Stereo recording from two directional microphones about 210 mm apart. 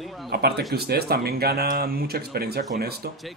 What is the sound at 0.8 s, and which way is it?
Speech, 50° right (ahead or behind).